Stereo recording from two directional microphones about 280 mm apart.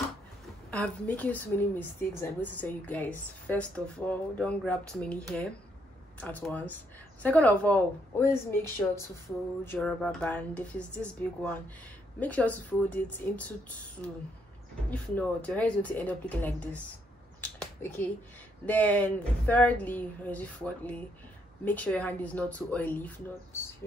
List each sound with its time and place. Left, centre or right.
0.7 s a woman's voice: centre
14.9 s a woman's voice: centre
17.4 s a sound: centre
18.7 s a woman's voice: centre